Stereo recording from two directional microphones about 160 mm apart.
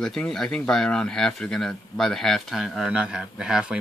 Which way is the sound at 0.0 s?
5° left (ahead or behind).